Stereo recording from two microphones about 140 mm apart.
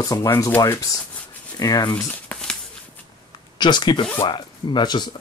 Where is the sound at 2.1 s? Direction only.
10° left (ahead or behind).